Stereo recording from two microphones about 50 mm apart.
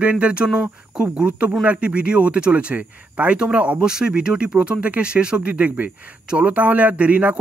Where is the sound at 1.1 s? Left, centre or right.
Right.